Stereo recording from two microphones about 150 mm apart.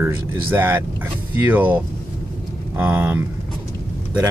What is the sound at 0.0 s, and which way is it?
Speech, 15° right (ahead or behind).